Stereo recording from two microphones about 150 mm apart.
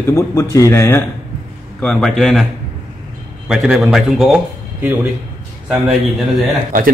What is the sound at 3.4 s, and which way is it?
A man's voice, 5° right (ahead or behind).